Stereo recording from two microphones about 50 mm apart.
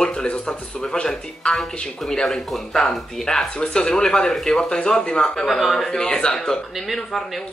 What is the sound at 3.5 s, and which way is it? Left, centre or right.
Speech, centre.